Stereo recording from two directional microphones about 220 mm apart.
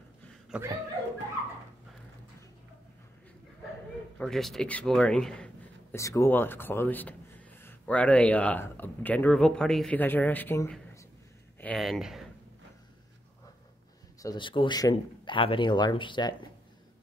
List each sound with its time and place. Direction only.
0.5 s a sound: 10° right (ahead or behind)
4.2 s speech: centre (ahead or behind)
11.6 s speech: centre (ahead or behind)
14.2 s speech: 20° left (ahead or behind)